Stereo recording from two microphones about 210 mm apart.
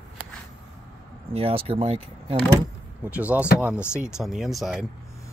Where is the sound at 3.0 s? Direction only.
5° right (ahead or behind).